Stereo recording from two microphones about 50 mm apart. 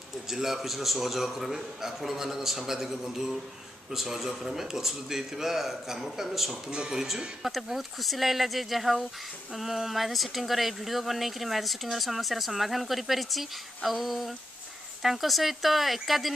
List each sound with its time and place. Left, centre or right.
0.3 s a man's voice: centre